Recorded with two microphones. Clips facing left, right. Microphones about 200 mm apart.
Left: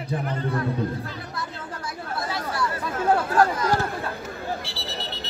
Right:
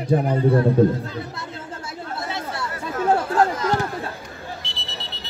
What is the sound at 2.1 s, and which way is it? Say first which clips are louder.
Chatter: left 1 dB; 25° right (ahead or behind).